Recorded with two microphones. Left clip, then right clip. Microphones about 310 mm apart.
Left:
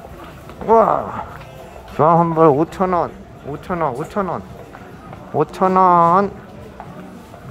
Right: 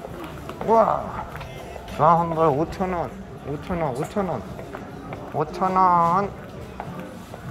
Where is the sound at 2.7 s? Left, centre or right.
Centre.